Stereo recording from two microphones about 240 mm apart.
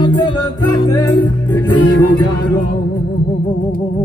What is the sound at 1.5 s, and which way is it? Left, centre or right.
Music, left.